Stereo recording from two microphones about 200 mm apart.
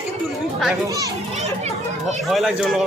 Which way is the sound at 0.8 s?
15° right (ahead or behind).